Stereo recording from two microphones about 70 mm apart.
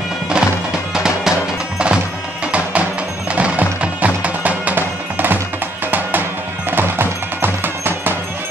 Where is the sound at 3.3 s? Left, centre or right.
Centre.